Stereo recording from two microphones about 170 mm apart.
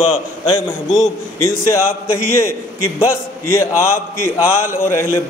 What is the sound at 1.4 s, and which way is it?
Speech, 15° left (ahead or behind).